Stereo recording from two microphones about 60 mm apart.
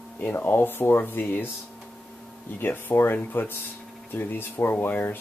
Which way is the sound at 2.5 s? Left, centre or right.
Left.